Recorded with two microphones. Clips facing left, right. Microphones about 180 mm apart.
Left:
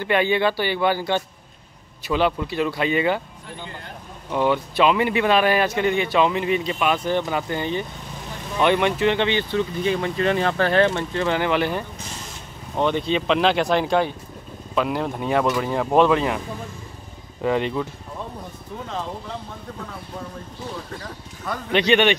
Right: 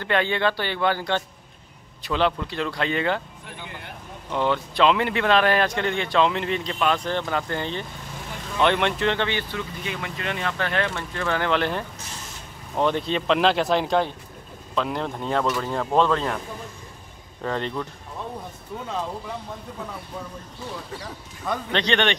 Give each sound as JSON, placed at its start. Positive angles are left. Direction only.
{"t": 0.0, "sound": "speech", "side_deg": 10}
{"t": 4.3, "sound": "speech", "side_deg": 10}
{"t": 17.4, "sound": "speech", "side_deg": 15}
{"t": 21.7, "sound": "speech", "side_deg": 10}